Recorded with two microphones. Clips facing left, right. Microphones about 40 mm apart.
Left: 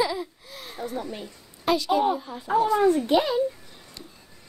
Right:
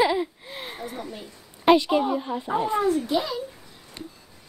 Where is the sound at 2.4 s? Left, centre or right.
Right.